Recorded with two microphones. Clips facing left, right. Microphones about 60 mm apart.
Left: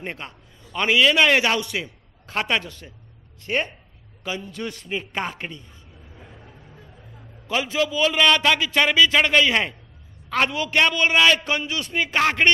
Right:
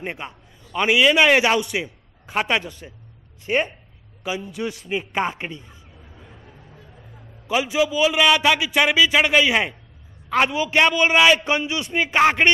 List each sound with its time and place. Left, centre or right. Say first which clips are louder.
0.0 s a man's voice: right 2 dB; centre
7.4 s a man's voice: right 3 dB; centre